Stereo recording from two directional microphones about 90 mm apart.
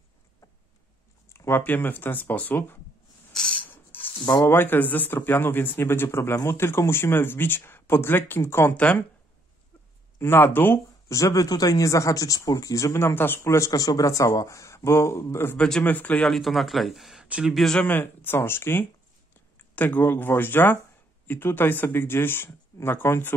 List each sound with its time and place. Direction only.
1.3 s a sound: 30° left (ahead or behind)
1.6 s speech: 20° left (ahead or behind)
3.3 s a sound: 15° left (ahead or behind)
4.5 s speech: 25° left (ahead or behind)
8.7 s speech: 15° left (ahead or behind)
10.1 s speech: 25° left (ahead or behind)
11.1 s speech: 35° left (ahead or behind)
13.7 s speech: 40° left (ahead or behind)
15.5 s speech: 10° left (ahead or behind)
16.3 s speech: centre (ahead or behind)
17.6 s speech: 5° left (ahead or behind)
17.8 s speech: 20° left (ahead or behind)